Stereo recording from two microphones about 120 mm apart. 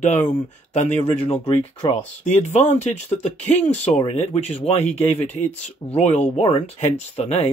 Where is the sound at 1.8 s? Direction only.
40° left (ahead or behind).